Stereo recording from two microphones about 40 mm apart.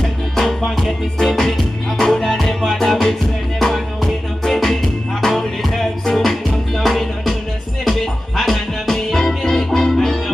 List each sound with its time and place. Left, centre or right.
0.4 s music: centre